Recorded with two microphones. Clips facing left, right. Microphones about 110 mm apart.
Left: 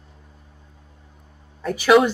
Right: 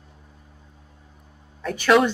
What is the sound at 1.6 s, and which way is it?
Speech, 5° left (ahead or behind).